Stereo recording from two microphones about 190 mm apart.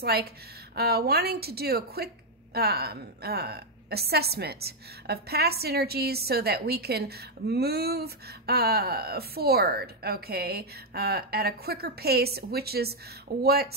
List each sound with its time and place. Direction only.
0.0 s a woman's voice: 55° right (ahead or behind)